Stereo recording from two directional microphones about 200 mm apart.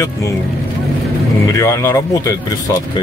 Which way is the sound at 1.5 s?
15° left (ahead or behind).